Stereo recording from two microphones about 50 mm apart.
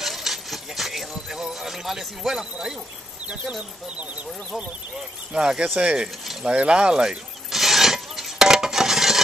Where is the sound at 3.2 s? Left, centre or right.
Right.